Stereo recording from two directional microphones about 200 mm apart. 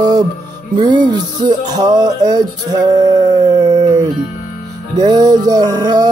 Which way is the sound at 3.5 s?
20° right (ahead or behind).